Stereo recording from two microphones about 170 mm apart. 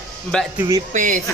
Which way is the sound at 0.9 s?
50° right (ahead or behind).